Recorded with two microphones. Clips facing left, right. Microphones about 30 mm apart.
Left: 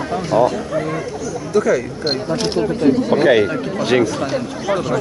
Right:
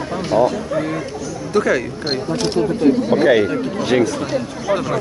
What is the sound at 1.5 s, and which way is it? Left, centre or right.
Speech, right.